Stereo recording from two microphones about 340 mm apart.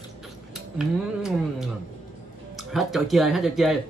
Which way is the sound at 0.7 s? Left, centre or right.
Centre.